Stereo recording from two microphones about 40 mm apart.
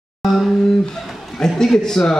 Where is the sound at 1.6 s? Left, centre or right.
Centre.